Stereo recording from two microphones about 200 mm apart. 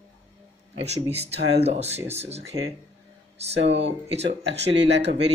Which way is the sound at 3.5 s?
60° right (ahead or behind).